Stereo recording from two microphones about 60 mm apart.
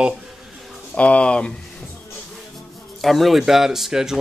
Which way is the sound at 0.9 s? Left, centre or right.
Left.